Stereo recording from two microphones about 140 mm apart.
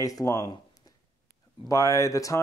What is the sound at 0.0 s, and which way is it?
Speech, 25° left (ahead or behind).